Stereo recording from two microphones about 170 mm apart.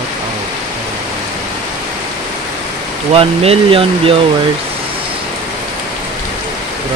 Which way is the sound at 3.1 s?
35° right (ahead or behind).